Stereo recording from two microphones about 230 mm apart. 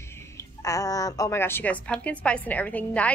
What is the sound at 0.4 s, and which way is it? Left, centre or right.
A woman's voice, centre.